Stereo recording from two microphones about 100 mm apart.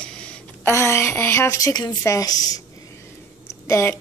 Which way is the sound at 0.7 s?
25° left (ahead or behind).